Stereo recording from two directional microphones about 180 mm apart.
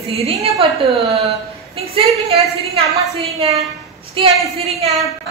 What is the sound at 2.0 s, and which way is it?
A woman's voice, 35° right (ahead or behind).